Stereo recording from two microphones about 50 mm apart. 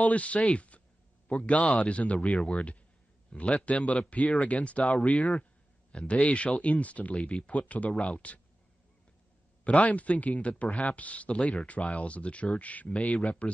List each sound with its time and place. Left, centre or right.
0.0 s a man's voice: left
9.7 s speech: left